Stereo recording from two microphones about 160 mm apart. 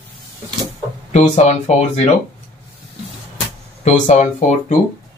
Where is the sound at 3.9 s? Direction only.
50° left (ahead or behind).